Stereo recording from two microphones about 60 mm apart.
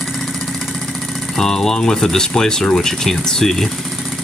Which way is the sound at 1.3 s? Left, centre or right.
Centre.